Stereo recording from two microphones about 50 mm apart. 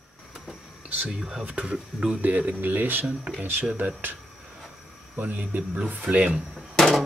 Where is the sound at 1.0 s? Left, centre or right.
Centre.